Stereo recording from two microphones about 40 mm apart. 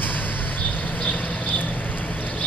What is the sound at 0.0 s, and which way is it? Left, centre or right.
Vehicle, left.